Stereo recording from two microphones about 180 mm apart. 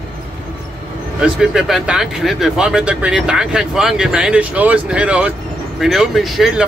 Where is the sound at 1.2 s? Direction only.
5° right (ahead or behind).